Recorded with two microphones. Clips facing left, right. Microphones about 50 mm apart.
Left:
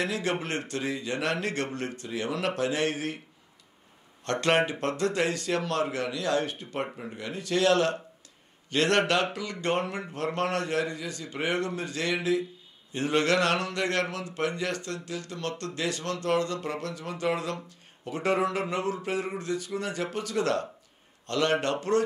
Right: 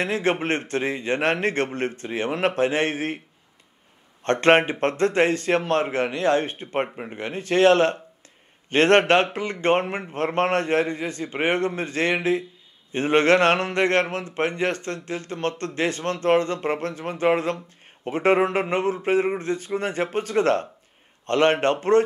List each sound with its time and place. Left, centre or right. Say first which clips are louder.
0.0 s speech: right 6 dB; right
4.2 s speech: right 7 dB; right